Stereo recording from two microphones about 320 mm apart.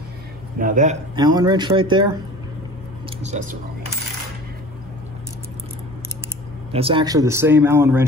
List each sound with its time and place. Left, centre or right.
0.6 s speech: right
3.2 s speech: right
6.7 s speech: centre